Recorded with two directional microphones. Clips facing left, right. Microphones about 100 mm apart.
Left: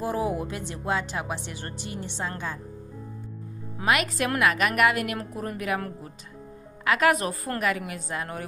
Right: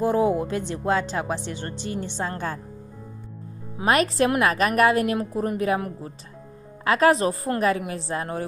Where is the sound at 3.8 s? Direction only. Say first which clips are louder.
Right 5 dB; 35° right (ahead or behind).